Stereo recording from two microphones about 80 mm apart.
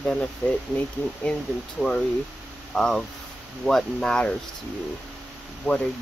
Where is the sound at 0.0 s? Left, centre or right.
Centre.